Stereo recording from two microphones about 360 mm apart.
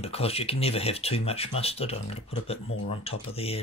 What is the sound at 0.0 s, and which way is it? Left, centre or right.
Speech, centre.